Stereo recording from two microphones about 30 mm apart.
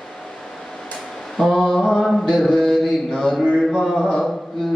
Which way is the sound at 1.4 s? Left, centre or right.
Centre.